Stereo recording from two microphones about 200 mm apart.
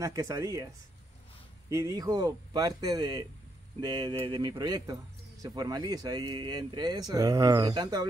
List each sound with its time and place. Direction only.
0.0 s speech: 15° right (ahead or behind)
1.7 s speech: 15° right (ahead or behind)